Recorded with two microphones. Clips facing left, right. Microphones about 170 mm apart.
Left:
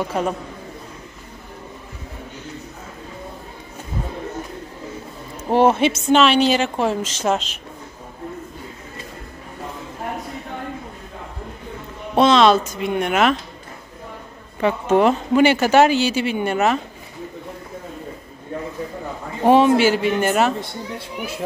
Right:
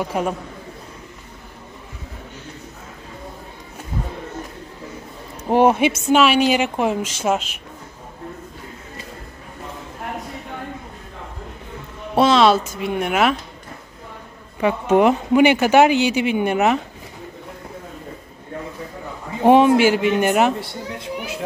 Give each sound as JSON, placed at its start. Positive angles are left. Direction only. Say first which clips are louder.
{"t": 0.0, "sound": "speech", "louder": "even", "side_deg": -10}
{"t": 5.4, "sound": "speech", "louder": "even", "side_deg": -15}
{"t": 12.2, "sound": "speech", "louder": "left 1 dB", "side_deg": -5}
{"t": 14.6, "sound": "speech", "louder": "right 1 dB", "side_deg": -10}
{"t": 19.4, "sound": "speech", "louder": "right 1 dB", "side_deg": -15}